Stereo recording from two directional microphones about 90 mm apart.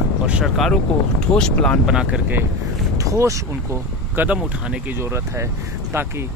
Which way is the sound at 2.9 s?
35° right (ahead or behind).